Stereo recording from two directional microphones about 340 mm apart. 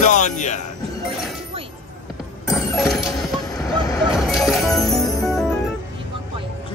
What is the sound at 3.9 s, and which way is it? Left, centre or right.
Music, centre.